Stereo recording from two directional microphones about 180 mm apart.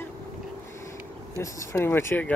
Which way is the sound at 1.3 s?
15° left (ahead or behind).